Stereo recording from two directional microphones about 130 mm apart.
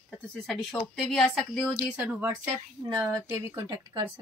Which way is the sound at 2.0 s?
15° right (ahead or behind).